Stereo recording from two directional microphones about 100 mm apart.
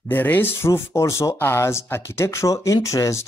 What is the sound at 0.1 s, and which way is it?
Speech, 20° left (ahead or behind).